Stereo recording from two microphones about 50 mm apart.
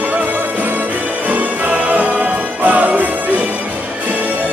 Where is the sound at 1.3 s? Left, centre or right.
Right.